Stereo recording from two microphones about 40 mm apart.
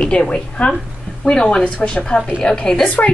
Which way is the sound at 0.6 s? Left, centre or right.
Left.